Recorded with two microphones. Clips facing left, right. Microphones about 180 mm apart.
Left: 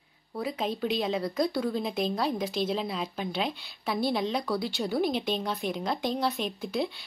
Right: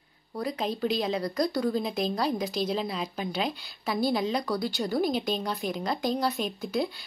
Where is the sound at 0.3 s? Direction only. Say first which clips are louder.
Right 1 dB; 5° left (ahead or behind).